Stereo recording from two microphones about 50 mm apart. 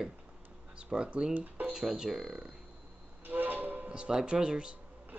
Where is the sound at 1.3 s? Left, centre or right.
Right.